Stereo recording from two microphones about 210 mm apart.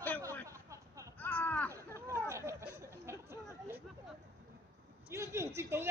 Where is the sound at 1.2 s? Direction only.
5° left (ahead or behind).